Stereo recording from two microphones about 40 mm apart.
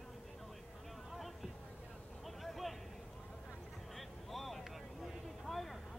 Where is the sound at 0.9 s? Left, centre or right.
Centre.